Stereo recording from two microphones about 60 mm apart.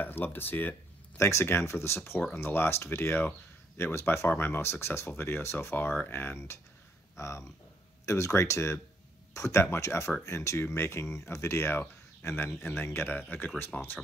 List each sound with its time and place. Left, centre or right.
0.0 s speech: left
1.1 s speech: left
4.3 s speech: left
13.7 s speech: left